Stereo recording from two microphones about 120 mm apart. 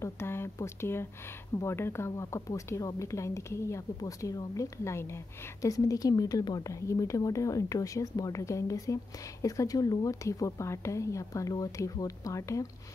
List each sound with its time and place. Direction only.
0.0 s speech: 20° left (ahead or behind)